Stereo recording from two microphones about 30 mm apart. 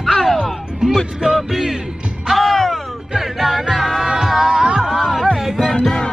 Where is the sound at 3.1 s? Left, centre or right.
Centre.